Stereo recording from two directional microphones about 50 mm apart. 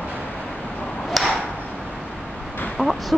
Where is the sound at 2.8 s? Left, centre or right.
Right.